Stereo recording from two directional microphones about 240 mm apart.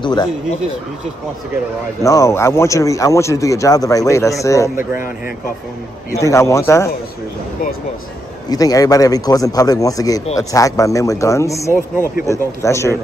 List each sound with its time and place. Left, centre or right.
0.0 s speech: centre
2.0 s speech: centre
6.1 s speech: centre
8.5 s speech: centre